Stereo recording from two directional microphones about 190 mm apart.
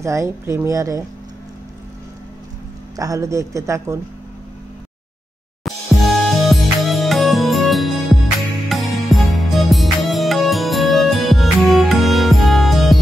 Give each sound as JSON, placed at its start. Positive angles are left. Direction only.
{"t": 0.0, "sound": "a woman's voice", "side_deg": -15}
{"t": 3.0, "sound": "a woman's voice", "side_deg": -15}
{"t": 5.6, "sound": "music", "side_deg": 0}